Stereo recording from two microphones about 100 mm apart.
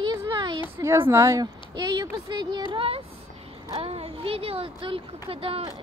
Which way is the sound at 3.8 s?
80° right.